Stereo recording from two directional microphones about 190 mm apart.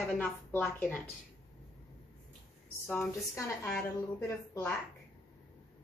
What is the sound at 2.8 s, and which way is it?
A woman's voice, 10° left (ahead or behind).